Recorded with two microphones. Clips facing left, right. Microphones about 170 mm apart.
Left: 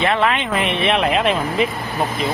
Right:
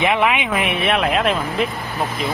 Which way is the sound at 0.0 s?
15° right (ahead or behind).